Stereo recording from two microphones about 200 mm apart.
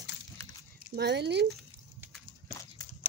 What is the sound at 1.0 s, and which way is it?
Speech, 55° right (ahead or behind).